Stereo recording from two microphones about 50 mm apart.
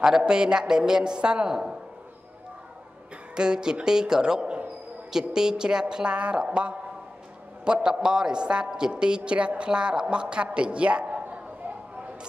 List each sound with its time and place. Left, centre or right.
0.2 s a woman's voice: centre
3.3 s a woman's voice: centre